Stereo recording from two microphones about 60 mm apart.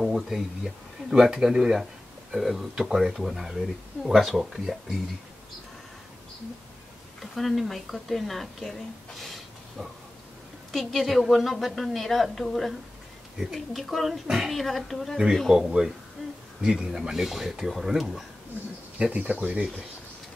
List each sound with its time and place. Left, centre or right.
0.0 s a woman's voice: centre
7.2 s a woman's voice: centre
10.7 s a woman's voice: centre
14.5 s a woman's voice: centre
15.5 s a woman's voice: centre
19.1 s speech: centre